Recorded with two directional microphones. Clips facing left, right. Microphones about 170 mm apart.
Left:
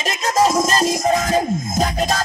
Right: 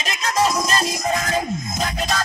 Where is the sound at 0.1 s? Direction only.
40° left (ahead or behind).